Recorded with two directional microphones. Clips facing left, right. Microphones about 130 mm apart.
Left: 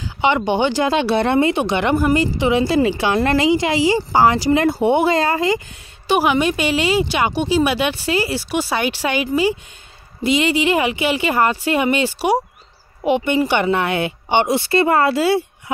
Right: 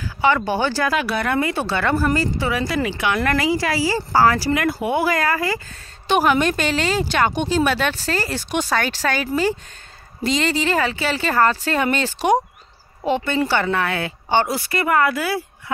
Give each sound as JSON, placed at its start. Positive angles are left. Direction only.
{"t": 0.0, "sound": "speech", "side_deg": 20}
{"t": 6.0, "sound": "speech", "side_deg": 10}